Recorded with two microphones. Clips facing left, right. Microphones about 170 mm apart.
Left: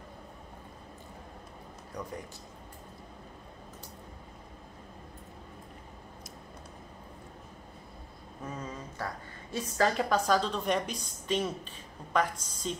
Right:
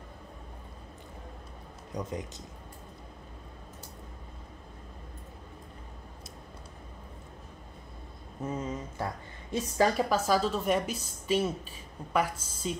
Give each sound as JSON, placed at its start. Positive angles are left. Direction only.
{"t": 1.9, "sound": "speech", "side_deg": -20}
{"t": 8.5, "sound": "speech", "side_deg": -20}
{"t": 9.9, "sound": "a woman's voice", "side_deg": -5}